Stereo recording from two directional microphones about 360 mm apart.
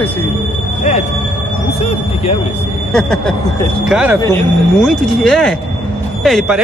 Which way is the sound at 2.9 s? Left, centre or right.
Centre.